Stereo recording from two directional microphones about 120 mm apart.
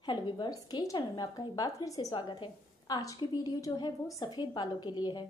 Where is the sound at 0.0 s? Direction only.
40° left (ahead or behind).